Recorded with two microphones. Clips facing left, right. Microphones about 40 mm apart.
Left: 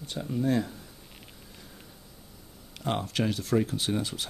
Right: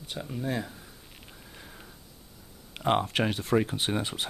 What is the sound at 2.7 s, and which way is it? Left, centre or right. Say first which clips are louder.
Speech: right 4 dB; right.